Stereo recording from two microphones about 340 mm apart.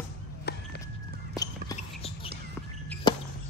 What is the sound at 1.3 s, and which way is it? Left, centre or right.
Basketball bounce, centre.